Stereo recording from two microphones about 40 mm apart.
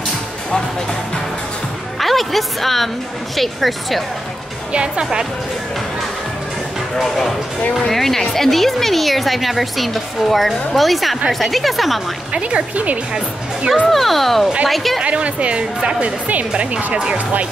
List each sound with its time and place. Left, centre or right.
2.0 s music: centre
3.3 s a woman's voice: centre
4.7 s speech: right
7.0 s a woman's voice: centre
12.3 s speech: right
12.7 s speech: right
13.8 s a woman's voice: centre
15.0 s speech: right
16.3 s speech: right
16.7 s speech: right